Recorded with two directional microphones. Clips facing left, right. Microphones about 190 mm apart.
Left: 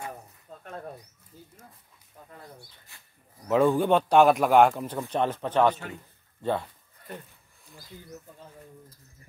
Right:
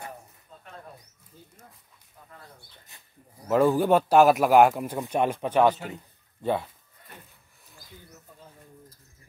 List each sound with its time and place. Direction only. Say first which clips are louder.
0.5 s a sound: left 5 dB; 45° left (ahead or behind)
2.9 s speech: right 1 dB; 20° right (ahead or behind)
3.4 s a man's voice: right 1 dB; centre (ahead or behind)